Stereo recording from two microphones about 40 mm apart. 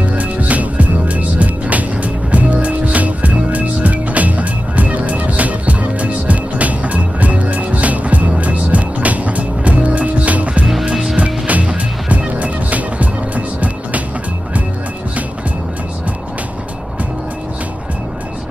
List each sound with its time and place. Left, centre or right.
0.2 s music: right